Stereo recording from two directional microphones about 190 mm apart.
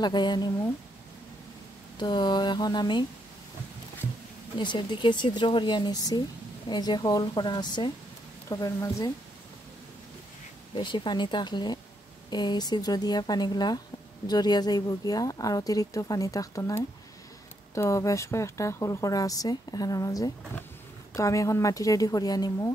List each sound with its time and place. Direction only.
0.0 s speech: 25° left (ahead or behind)
2.0 s speech: 25° left (ahead or behind)
4.6 s a woman's voice: 25° left (ahead or behind)
10.7 s a woman's voice: 25° left (ahead or behind)